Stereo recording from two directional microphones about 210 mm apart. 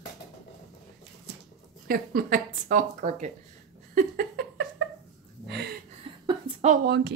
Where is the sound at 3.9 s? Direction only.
45° right (ahead or behind).